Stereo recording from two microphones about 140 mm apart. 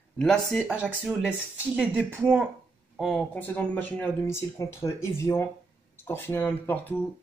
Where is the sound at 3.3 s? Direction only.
15° left (ahead or behind).